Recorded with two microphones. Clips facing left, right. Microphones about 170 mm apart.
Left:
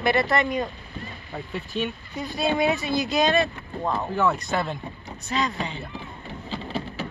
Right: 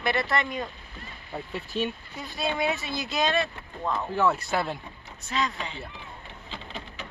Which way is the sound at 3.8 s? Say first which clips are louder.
Left 3 dB; 25° left (ahead or behind).